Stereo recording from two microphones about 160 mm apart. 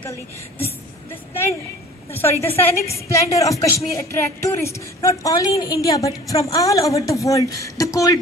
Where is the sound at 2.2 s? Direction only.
15° left (ahead or behind).